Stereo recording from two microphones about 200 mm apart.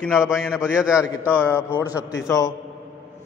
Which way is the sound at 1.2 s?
10° left (ahead or behind).